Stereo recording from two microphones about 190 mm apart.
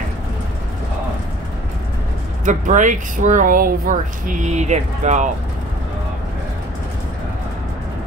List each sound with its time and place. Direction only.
2.4 s speech: 40° right (ahead or behind)